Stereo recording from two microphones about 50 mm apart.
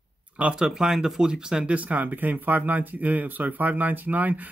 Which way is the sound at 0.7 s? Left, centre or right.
Centre.